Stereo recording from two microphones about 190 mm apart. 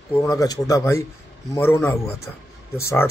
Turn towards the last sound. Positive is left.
turn(degrees=15)  # may be behind; listen again after turning